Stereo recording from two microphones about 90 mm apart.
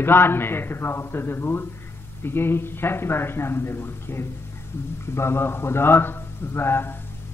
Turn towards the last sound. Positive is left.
turn(degrees=25)  # may be behind; listen again after turning